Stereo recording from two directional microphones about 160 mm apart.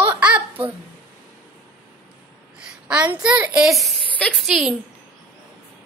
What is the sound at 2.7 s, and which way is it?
A woman's voice, 5° right (ahead or behind).